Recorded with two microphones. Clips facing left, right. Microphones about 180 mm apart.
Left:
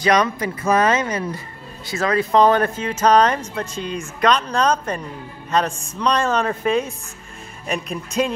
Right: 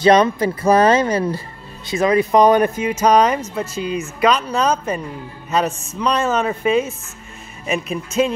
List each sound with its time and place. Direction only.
0.0 s speech: 30° right (ahead or behind)
1.9 s speech: 20° right (ahead or behind); by 8.3 s 5° right (ahead or behind)